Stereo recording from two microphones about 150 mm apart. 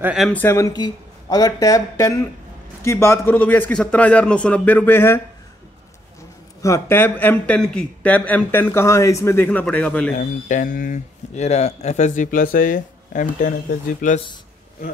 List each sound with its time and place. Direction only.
0.0 s speech: 5° right (ahead or behind)
0.3 s a man's voice: 15° left (ahead or behind)
6.6 s a man's voice: 20° left (ahead or behind)
10.1 s speech: 60° left (ahead or behind)